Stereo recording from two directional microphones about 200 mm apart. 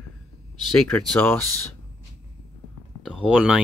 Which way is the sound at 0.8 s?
5° left (ahead or behind).